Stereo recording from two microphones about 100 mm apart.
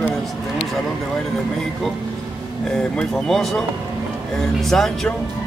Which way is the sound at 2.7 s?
5° left (ahead or behind).